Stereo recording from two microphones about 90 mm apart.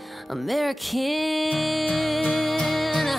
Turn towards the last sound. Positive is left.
turn(degrees=0)  # may be behind; listen again after turning